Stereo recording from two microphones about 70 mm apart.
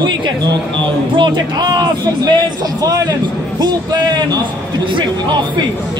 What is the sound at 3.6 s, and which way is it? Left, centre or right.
Speech, right.